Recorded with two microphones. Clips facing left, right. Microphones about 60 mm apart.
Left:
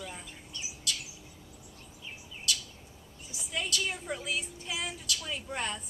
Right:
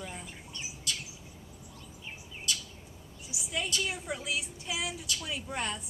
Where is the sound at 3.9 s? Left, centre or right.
Centre.